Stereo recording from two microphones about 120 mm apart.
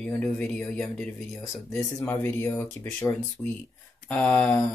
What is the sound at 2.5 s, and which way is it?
Speech, 5° left (ahead or behind).